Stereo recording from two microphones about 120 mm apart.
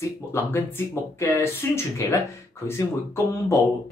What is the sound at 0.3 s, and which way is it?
Speech, 20° left (ahead or behind).